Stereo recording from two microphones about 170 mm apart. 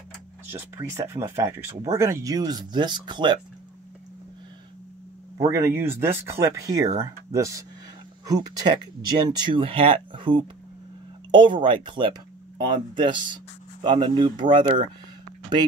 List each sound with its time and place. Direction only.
0.5 s speech: 15° right (ahead or behind)
5.4 s speech: 20° right (ahead or behind)